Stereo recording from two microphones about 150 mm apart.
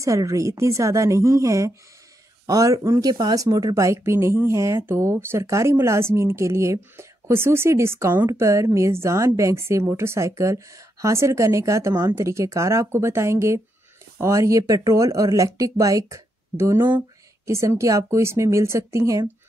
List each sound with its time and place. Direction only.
0.0 s speech: 20° right (ahead or behind)